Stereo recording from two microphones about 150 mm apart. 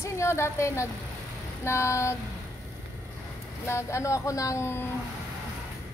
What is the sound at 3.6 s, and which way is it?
Speech, 20° left (ahead or behind).